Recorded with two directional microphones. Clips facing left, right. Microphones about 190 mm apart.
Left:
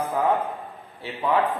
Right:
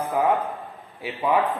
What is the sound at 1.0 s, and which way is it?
Speech, 15° right (ahead or behind).